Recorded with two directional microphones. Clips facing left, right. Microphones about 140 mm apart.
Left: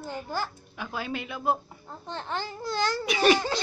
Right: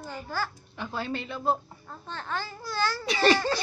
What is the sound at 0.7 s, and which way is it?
Speech, 5° left (ahead or behind).